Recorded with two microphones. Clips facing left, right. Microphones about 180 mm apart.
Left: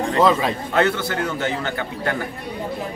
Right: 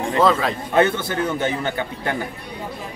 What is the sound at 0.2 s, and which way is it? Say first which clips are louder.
Speech: even; 15° left (ahead or behind).